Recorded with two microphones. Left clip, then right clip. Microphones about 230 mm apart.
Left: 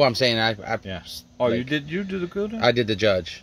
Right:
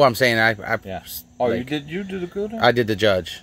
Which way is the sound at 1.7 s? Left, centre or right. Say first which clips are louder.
Even; left.